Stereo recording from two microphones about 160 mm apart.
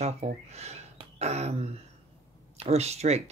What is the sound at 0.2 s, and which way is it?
Speech, 45° right (ahead or behind).